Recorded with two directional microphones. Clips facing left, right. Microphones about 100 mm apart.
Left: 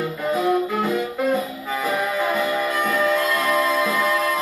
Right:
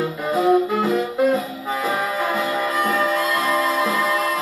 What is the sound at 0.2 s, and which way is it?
Music, centre (ahead or behind).